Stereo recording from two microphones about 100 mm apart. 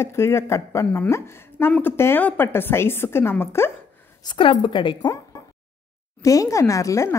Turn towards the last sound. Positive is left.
turn(degrees=30)  # may be behind; listen again after turning